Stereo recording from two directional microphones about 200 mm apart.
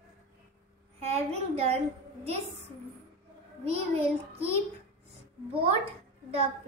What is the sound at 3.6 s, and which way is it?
Speech, 30° right (ahead or behind).